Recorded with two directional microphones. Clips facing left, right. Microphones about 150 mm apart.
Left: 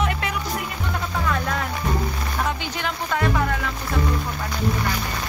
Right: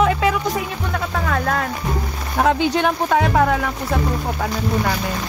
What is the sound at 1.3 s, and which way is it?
Speech, 70° right (ahead or behind).